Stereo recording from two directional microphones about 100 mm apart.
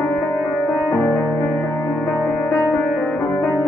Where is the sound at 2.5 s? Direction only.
25° left (ahead or behind).